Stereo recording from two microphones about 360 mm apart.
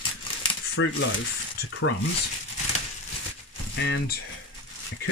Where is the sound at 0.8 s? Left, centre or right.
Left.